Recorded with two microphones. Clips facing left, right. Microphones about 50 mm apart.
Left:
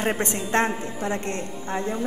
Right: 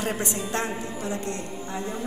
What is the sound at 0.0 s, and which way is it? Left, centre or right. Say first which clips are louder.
A woman's voice: left 3 dB; left.